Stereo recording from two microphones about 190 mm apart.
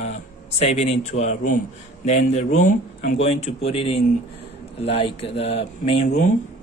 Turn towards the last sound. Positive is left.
turn(degrees=40)  # may be behind; listen again after turning